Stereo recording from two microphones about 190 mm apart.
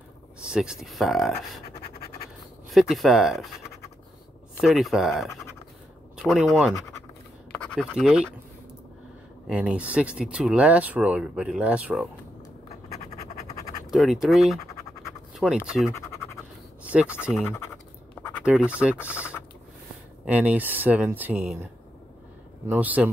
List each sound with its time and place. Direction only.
0.4 s speech: 5° right (ahead or behind)
2.7 s speech: centre (ahead or behind)
6.1 s a sound: centre (ahead or behind)
7.5 s scratch: 5° left (ahead or behind)
7.9 s speech: 5° right (ahead or behind)
9.5 s speech: 5° right (ahead or behind)
12.6 s scratch: 35° left (ahead or behind)
13.8 s speech: centre (ahead or behind)
16.9 s speech: 5° right (ahead or behind)
18.4 s speech: 5° right (ahead or behind)
20.2 s speech: 10° right (ahead or behind)
22.7 s speech: 10° right (ahead or behind)